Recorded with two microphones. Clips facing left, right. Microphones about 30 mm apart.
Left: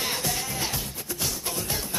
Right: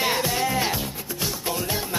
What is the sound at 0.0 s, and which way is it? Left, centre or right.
Music, right.